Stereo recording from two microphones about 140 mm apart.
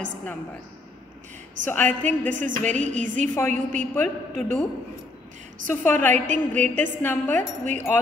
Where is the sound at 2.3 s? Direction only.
65° right (ahead or behind).